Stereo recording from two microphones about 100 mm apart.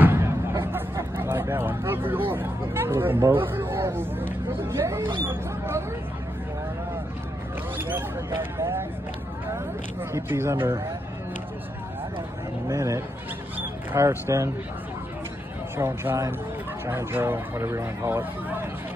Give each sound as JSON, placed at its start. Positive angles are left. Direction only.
{"t": 0.0, "sound": "a sound", "side_deg": -25}
{"t": 7.7, "sound": "mouse", "side_deg": -20}
{"t": 10.1, "sound": "speech", "side_deg": -25}
{"t": 12.6, "sound": "speech", "side_deg": -30}
{"t": 13.6, "sound": "a sound", "side_deg": -25}
{"t": 15.8, "sound": "speech", "side_deg": -25}